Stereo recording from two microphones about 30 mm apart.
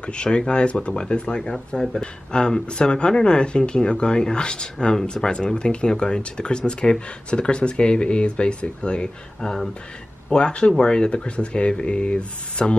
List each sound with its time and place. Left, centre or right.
0.0 s speech: left
1.4 s speech: left